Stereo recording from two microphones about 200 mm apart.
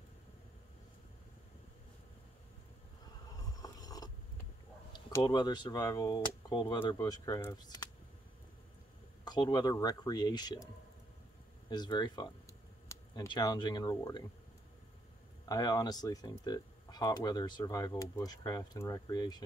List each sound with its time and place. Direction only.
3.3 s vehicle: 20° left (ahead or behind)
4.9 s speech: 20° left (ahead or behind)
9.2 s speech: 20° left (ahead or behind)
11.7 s speech: 20° left (ahead or behind)
15.4 s speech: 20° left (ahead or behind)